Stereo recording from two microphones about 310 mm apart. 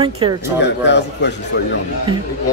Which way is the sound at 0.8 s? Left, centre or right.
Left.